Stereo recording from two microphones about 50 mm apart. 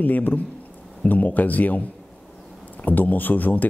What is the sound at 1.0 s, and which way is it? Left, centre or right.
A man's voice, left.